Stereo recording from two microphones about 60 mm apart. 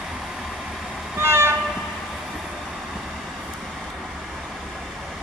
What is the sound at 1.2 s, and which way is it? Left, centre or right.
Vehicle, right.